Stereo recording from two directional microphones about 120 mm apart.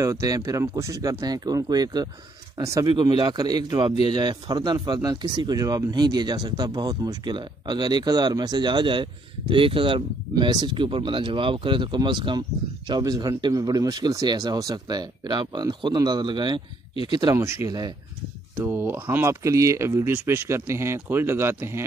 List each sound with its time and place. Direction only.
0.0 s speech: 25° right (ahead or behind)
17.4 s speech: 25° right (ahead or behind)